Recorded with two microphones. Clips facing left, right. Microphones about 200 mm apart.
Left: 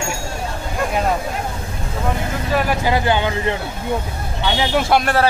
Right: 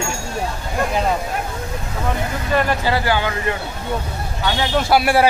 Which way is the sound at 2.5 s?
15° left (ahead or behind).